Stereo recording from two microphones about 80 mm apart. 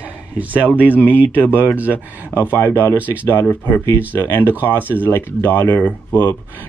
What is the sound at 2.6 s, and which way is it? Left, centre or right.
Speech, left.